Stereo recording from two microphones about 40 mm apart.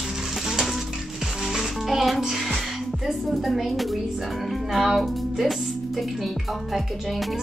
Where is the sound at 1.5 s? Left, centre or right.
Centre.